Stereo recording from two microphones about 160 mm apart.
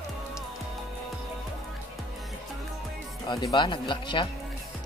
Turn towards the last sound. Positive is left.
turn(degrees=30)  # may be behind; listen again after turning